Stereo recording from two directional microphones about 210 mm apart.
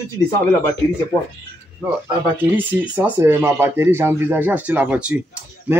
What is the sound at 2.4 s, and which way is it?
Speech, 10° right (ahead or behind).